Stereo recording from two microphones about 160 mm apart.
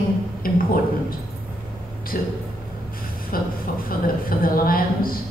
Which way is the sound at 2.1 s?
65° left (ahead or behind).